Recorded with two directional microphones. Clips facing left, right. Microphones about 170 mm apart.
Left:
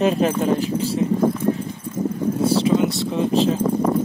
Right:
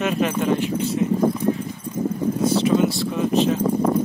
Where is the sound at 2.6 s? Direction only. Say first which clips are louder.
Even; 30° left (ahead or behind).